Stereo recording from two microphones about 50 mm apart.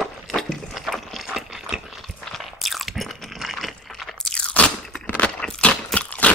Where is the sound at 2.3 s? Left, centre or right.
Centre.